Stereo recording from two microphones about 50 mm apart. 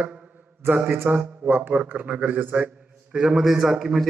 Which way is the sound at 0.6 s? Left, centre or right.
Right.